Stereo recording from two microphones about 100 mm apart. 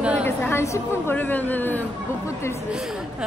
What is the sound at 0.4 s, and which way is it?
A woman's voice, 25° left (ahead or behind).